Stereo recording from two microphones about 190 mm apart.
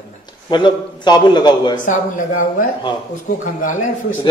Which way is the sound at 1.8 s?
45° left (ahead or behind).